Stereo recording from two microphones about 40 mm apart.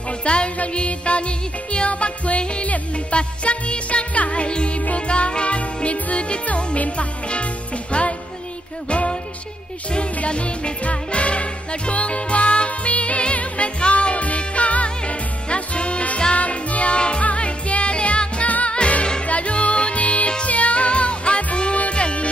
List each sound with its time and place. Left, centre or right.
0.2 s music: left